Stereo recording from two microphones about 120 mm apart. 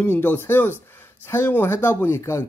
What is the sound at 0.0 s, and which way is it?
Speech, 15° left (ahead or behind).